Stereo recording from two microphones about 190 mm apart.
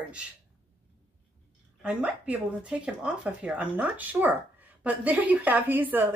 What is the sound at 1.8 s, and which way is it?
Speech, 5° right (ahead or behind).